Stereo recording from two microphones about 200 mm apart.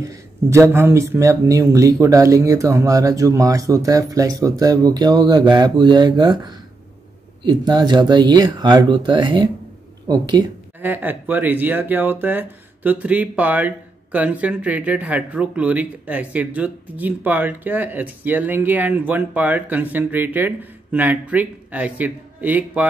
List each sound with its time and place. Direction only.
0.0 s speech: 15° right (ahead or behind)
10.8 s speech: 10° right (ahead or behind)